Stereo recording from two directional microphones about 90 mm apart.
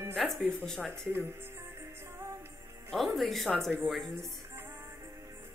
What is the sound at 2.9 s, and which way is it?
Speech, centre (ahead or behind).